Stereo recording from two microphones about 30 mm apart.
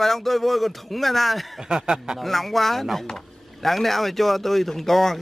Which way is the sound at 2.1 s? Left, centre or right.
Centre.